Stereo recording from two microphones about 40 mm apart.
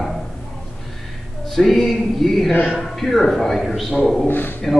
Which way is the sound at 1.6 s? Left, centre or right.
Centre.